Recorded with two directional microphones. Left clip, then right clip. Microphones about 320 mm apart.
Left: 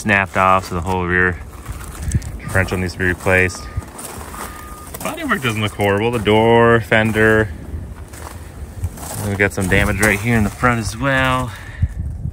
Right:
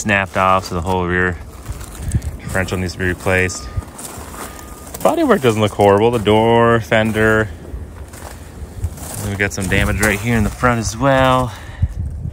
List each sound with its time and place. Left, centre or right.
0.0 s speech: centre
5.0 s speech: centre
9.0 s speech: centre